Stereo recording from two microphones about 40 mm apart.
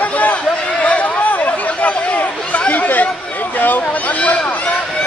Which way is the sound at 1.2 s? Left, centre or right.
Left.